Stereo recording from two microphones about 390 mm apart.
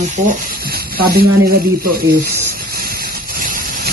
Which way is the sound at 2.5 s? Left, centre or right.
Right.